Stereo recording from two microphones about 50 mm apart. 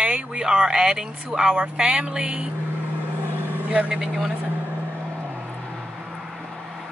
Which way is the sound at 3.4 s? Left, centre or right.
Right.